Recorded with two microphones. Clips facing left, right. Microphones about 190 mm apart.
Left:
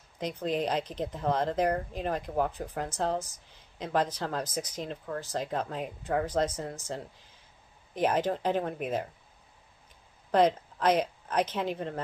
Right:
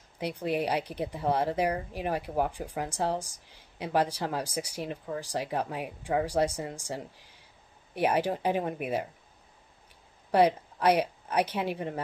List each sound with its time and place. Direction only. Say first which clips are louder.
0.2 s speech: right 1 dB; 10° right (ahead or behind)
10.3 s speech: right 1 dB; 10° right (ahead or behind)